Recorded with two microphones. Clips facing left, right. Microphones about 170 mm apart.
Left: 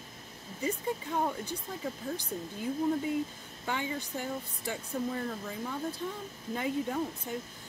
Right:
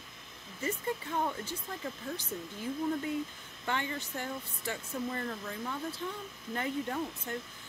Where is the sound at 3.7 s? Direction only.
10° left (ahead or behind).